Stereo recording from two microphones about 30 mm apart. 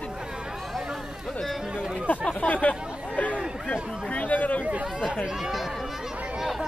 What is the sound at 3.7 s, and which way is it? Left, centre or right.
Speech, left.